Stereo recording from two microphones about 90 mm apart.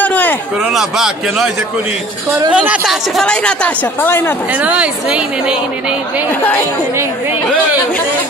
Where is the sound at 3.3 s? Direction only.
10° left (ahead or behind).